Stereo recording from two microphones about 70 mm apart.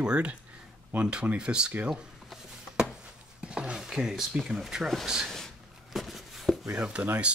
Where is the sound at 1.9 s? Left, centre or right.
Centre.